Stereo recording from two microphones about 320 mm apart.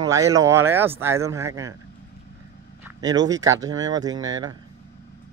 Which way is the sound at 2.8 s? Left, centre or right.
Centre.